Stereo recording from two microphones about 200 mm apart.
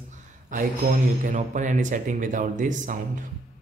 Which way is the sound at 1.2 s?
40° right (ahead or behind).